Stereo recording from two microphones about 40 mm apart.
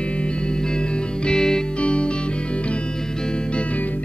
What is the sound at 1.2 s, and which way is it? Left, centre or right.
Music, left.